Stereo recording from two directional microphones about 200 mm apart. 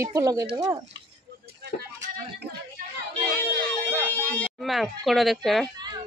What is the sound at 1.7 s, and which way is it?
Speech, 40° left (ahead or behind).